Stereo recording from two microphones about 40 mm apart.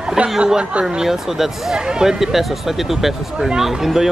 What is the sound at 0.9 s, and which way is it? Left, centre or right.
Speech, centre.